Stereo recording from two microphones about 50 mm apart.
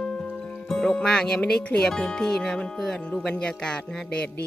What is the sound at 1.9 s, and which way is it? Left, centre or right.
Speech, centre.